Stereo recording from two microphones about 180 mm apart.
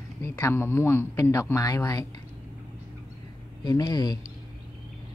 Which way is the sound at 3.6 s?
20° left (ahead or behind).